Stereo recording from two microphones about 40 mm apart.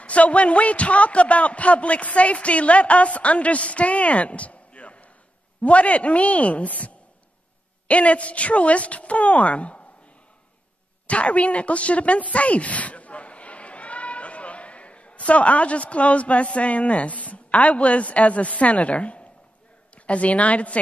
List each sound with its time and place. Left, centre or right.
0.0 s speech: left
7.9 s speech: left
11.1 s speech: left